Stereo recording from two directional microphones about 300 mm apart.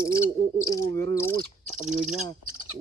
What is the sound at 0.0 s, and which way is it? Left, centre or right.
Speech, centre.